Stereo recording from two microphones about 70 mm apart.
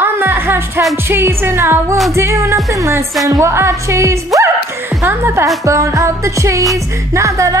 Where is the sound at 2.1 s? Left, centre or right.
Right.